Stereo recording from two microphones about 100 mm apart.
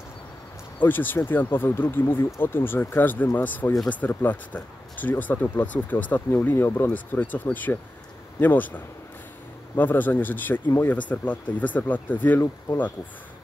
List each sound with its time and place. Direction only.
0.7 s speech: 20° left (ahead or behind)